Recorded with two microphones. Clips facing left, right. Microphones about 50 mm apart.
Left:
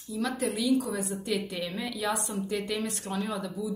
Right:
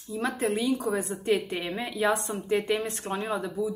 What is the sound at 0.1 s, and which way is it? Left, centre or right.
A woman's voice, right.